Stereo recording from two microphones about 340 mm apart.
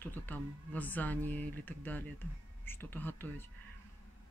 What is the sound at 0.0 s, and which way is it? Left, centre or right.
Speech, centre.